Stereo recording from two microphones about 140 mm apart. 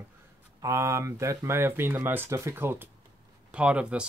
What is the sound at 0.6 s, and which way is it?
Speech, 20° right (ahead or behind).